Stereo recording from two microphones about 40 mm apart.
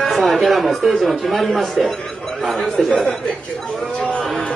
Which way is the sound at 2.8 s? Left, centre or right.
Left.